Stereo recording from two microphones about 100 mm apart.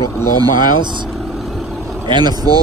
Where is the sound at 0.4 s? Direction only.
50° right (ahead or behind).